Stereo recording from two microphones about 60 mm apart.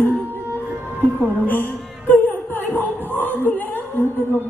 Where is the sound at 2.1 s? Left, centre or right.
Left.